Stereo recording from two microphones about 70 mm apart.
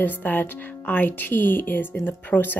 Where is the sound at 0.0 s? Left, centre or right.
Left.